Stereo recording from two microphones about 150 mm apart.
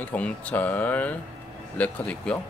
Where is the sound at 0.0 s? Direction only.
10° left (ahead or behind).